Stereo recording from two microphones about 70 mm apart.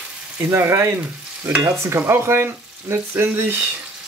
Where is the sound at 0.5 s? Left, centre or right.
Right.